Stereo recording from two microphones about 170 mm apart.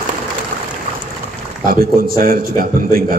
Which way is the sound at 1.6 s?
60° right (ahead or behind).